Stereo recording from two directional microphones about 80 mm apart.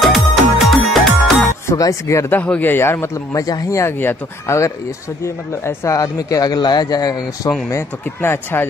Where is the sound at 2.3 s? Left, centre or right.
Centre.